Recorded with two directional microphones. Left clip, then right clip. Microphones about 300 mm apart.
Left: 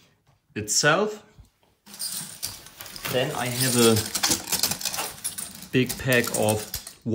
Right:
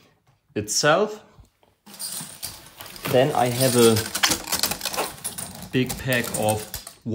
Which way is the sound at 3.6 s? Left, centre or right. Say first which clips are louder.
Right 2 dB; centre.